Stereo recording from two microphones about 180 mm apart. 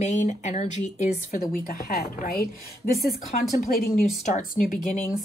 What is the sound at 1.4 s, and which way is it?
Speech, 55° left (ahead or behind).